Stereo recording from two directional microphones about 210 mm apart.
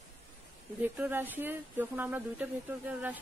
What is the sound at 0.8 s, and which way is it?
Speech, 10° right (ahead or behind).